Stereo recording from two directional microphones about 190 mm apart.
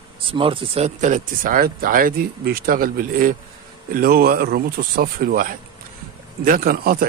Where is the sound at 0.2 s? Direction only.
30° right (ahead or behind).